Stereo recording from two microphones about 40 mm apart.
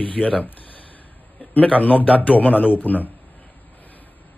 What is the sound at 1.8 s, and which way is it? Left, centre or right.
Speech, left.